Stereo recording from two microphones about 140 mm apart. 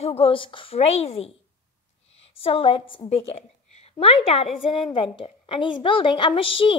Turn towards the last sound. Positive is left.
turn(degrees=40)  # may be behind; listen again after turning